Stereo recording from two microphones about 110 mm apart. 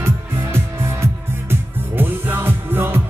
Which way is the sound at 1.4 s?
20° right (ahead or behind).